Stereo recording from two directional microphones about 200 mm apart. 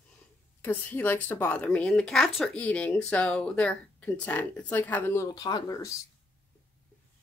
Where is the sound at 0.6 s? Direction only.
10° left (ahead or behind).